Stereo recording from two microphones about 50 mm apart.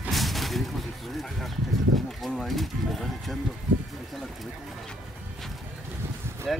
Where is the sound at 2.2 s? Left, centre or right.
Centre.